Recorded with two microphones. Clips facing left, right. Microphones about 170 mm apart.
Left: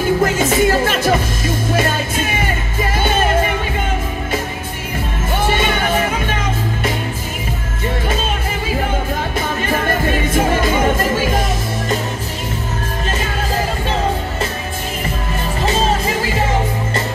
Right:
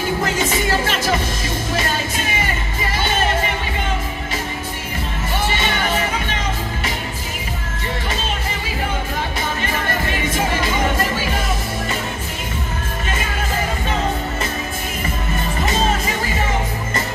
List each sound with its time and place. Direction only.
0.2 s music: 50° left (ahead or behind)
5.5 s music: 50° left (ahead or behind)
9.7 s music: 50° left (ahead or behind)